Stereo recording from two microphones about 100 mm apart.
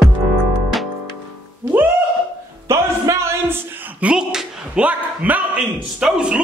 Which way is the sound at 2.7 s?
30° right (ahead or behind).